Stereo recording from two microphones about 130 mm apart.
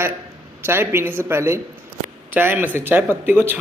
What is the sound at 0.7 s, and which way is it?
Speech, 20° right (ahead or behind).